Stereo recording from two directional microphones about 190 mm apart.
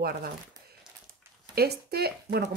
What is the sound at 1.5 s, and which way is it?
Speech, 55° right (ahead or behind).